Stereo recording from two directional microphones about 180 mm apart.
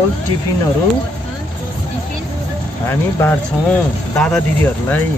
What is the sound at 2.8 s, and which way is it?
Speech, 15° left (ahead or behind).